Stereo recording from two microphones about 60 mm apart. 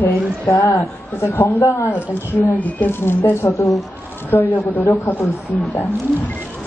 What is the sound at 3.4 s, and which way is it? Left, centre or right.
Speech, left.